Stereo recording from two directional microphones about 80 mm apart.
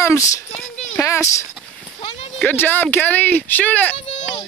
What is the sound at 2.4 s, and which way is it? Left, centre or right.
Speech, left.